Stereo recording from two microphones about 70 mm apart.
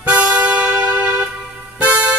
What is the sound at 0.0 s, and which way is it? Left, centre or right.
Music, centre.